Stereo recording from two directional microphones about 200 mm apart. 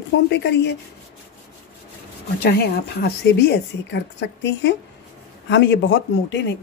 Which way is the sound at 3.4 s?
55° left (ahead or behind).